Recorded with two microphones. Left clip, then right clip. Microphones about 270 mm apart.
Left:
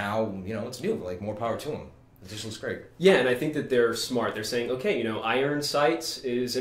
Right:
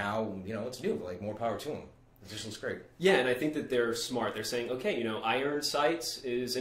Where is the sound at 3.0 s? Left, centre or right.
Left.